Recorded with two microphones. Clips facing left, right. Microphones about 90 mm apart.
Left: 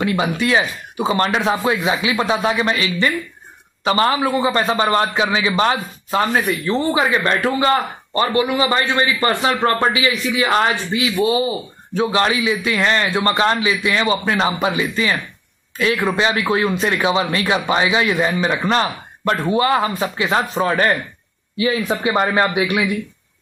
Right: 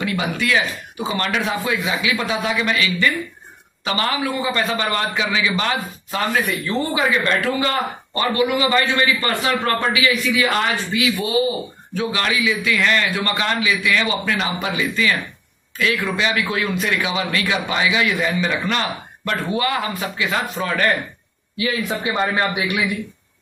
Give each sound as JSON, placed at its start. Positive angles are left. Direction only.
{"t": 0.0, "sound": "a man's voice", "side_deg": 30}